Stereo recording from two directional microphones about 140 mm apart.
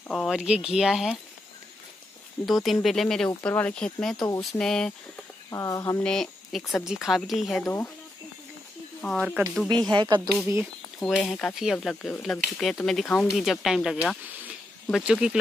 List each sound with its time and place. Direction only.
0.1 s speech: centre (ahead or behind)
2.4 s speech: centre (ahead or behind)
5.5 s speech: 25° left (ahead or behind)
6.0 s speech: 5° left (ahead or behind)
7.6 s speech: 15° left (ahead or behind)
9.0 s speech: 5° left (ahead or behind)
9.8 s speech: 35° right (ahead or behind)
10.6 s speech: centre (ahead or behind)
13.3 s speech: centre (ahead or behind)